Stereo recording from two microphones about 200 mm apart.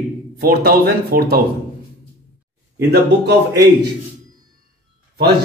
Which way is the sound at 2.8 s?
55° right (ahead or behind).